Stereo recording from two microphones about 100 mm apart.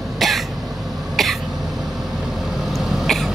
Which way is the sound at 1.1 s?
Centre (ahead or behind).